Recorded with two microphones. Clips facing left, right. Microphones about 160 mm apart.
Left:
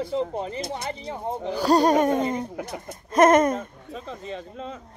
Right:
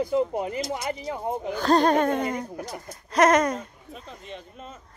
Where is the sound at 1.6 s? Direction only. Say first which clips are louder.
Left 2 dB; 10° left (ahead or behind).